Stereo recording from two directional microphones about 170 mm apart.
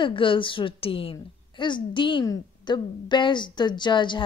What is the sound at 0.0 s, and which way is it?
A woman's voice, 30° left (ahead or behind).